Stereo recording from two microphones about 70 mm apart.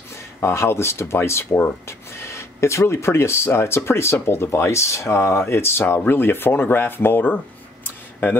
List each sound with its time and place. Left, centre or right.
0.1 s speech: left